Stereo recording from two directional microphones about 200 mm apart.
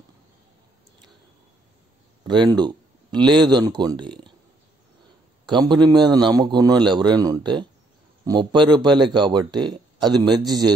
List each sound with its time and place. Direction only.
2.2 s speech: 20° right (ahead or behind)
5.5 s a man's voice: 20° right (ahead or behind)